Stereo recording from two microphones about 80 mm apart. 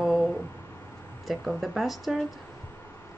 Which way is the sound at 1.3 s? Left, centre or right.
Centre.